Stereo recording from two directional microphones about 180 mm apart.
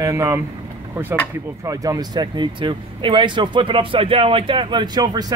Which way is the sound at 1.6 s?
20° right (ahead or behind).